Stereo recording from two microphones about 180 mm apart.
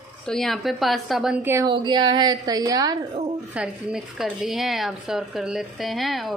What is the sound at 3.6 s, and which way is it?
A woman's voice, 5° right (ahead or behind).